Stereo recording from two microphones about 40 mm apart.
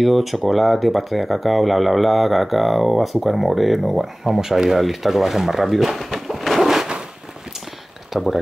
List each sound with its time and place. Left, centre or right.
0.0 s speech: centre
8.1 s speech: centre